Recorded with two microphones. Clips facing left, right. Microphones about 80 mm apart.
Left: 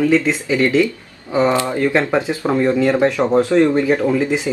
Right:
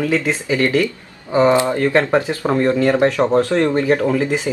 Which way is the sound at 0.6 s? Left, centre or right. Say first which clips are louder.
Left 3 dB; centre.